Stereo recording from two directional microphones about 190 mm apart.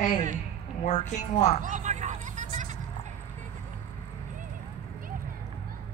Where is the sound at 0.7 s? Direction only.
35° left (ahead or behind).